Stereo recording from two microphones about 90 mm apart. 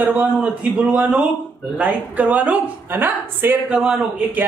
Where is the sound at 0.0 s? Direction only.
15° right (ahead or behind).